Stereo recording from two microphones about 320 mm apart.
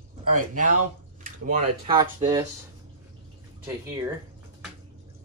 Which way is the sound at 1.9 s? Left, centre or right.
Centre.